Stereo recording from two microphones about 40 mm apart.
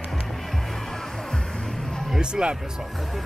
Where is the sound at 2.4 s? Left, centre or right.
Centre.